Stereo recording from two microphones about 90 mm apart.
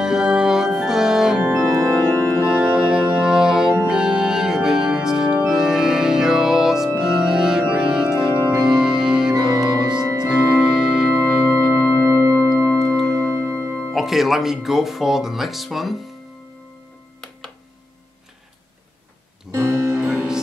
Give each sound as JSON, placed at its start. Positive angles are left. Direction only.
{"t": 0.0, "sound": "organ", "side_deg": -5}
{"t": 3.7, "sound": "music", "side_deg": -10}
{"t": 7.0, "sound": "organ", "side_deg": -5}
{"t": 12.1, "sound": "music", "side_deg": -35}
{"t": 12.7, "sound": "music", "side_deg": 0}
{"t": 13.5, "sound": "music", "side_deg": -30}
{"t": 13.9, "sound": "speech", "side_deg": 0}
{"t": 19.5, "sound": "music", "side_deg": -20}